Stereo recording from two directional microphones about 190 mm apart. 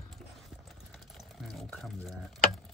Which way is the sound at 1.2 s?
Centre (ahead or behind).